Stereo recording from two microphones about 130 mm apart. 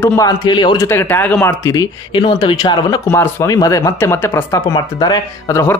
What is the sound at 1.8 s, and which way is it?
Speech, 35° left (ahead or behind).